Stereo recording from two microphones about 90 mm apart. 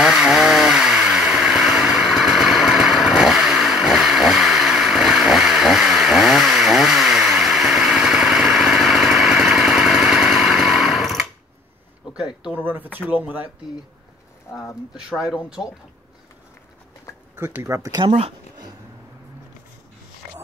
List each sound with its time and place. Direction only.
0.0 s chainsaw: 5° right (ahead or behind)
12.5 s a sound: 20° right (ahead or behind)
13.1 s speech: 20° right (ahead or behind)
14.5 s speech: 35° left (ahead or behind)
15.0 s speech: 10° right (ahead or behind)
17.5 s speech: 30° right (ahead or behind)